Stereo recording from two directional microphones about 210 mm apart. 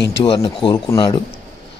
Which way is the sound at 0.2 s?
20° left (ahead or behind).